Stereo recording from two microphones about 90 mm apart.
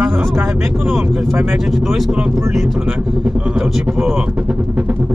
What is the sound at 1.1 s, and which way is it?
Speech, centre (ahead or behind).